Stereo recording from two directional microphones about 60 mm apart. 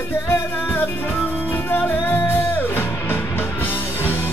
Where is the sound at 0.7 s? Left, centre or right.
Left.